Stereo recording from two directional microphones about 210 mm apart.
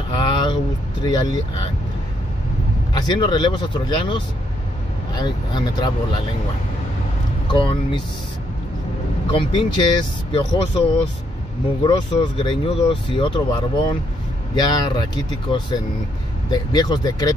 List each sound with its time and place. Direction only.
0.1 s vehicle: 20° left (ahead or behind)
1.0 s speech: 20° left (ahead or behind)
2.9 s speech: 20° left (ahead or behind)
7.5 s speech: 25° left (ahead or behind)
9.3 s speech: 20° left (ahead or behind)